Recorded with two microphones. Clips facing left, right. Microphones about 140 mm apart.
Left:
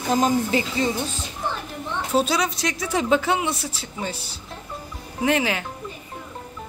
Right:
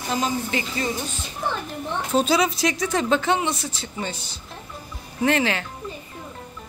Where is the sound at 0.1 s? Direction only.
40° left (ahead or behind).